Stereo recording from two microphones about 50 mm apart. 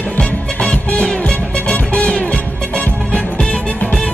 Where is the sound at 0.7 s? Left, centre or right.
Centre.